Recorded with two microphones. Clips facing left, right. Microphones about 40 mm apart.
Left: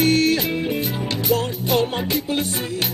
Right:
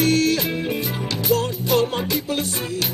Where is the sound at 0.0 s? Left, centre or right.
Left.